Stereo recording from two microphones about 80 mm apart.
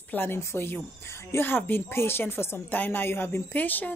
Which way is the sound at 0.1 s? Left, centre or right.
Left.